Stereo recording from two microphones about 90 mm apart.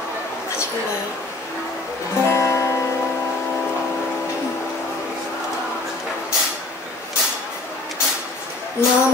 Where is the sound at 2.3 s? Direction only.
30° left (ahead or behind).